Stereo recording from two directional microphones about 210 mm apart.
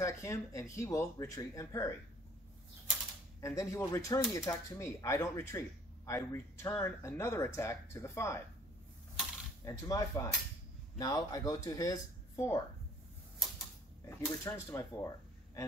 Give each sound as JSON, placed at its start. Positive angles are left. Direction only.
{"t": 0.0, "sound": "speech", "side_deg": 15}
{"t": 3.3, "sound": "speech", "side_deg": 15}
{"t": 9.7, "sound": "speech", "side_deg": 15}
{"t": 14.0, "sound": "speech", "side_deg": 10}